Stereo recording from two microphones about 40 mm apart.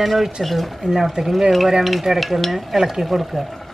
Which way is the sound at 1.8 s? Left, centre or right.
Centre.